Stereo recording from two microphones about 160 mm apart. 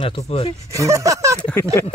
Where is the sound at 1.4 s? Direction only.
5° left (ahead or behind).